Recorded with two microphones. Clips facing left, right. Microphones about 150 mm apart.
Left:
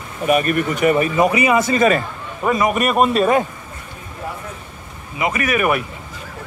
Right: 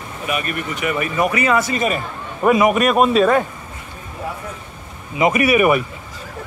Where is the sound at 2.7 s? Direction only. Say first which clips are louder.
Right 2 dB; centre (ahead or behind).